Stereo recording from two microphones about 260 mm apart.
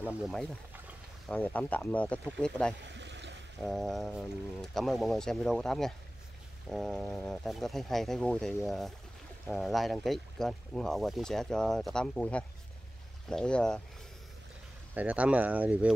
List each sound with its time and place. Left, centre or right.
0.0 s speech: centre
2.9 s stream: right
3.6 s speech: centre
15.0 s speech: centre